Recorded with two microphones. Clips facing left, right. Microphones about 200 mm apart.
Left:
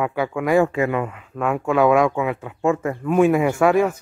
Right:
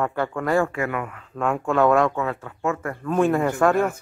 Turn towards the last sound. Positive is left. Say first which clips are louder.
# left 3 dB
turn(degrees=10)  # may be behind; listen again after turning